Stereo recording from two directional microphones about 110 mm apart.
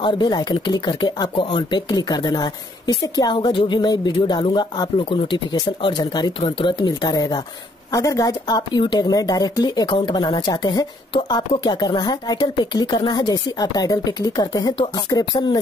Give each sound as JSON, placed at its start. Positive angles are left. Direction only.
{"t": 0.0, "sound": "speech", "side_deg": 40}